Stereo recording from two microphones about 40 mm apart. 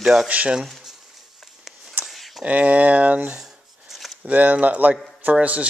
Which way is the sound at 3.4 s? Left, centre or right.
Centre.